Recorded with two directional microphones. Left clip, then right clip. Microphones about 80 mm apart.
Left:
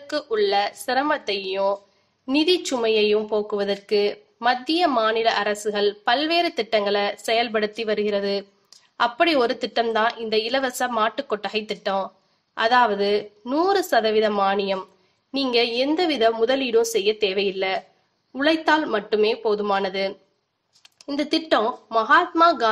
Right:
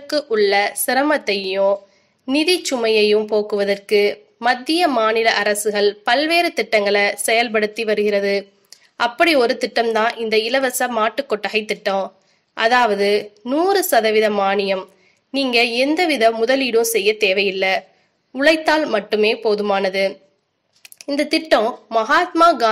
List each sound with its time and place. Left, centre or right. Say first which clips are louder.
0.0 s a woman's voice: right 5 dB; right
13.4 s a woman's voice: right 4 dB; centre